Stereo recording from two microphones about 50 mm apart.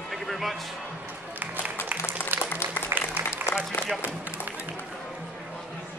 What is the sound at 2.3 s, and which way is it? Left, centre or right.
Applause, right.